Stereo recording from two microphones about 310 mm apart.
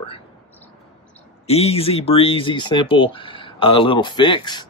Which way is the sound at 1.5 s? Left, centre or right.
Centre.